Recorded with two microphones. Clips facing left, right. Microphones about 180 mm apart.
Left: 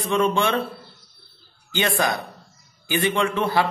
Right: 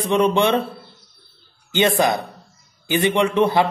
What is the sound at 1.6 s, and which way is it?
A man's voice, 20° right (ahead or behind).